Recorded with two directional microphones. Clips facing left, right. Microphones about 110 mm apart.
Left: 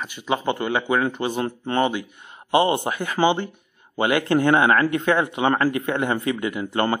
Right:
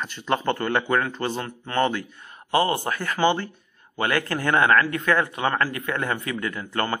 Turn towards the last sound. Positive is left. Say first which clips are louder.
# left 4 dB
turn(degrees=20)  # may be behind; listen again after turning